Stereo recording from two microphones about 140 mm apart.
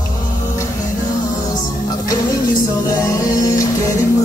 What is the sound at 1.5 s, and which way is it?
Music, 25° left (ahead or behind).